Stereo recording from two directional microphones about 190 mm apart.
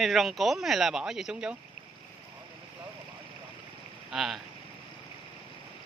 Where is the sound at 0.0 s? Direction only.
Centre (ahead or behind).